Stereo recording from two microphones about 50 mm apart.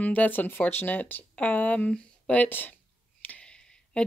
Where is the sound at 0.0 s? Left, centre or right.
Left.